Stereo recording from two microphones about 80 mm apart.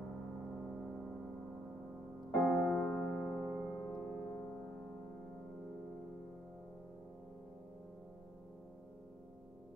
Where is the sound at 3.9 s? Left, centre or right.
Centre.